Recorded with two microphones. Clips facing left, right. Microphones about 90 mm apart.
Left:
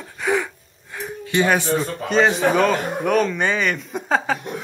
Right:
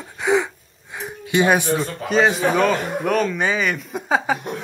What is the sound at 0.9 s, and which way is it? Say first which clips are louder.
Music: right 1 dB; 15° right (ahead or behind).